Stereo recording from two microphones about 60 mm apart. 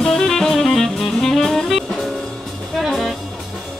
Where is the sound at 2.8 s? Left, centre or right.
Centre.